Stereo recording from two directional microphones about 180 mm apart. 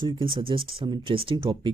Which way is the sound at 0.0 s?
25° right (ahead or behind).